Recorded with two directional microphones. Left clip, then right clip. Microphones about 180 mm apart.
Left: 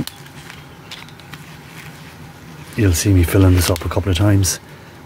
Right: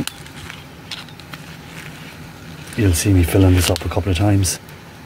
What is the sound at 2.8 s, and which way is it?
Speech, 25° left (ahead or behind).